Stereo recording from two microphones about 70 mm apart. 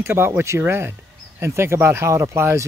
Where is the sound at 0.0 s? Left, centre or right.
Right.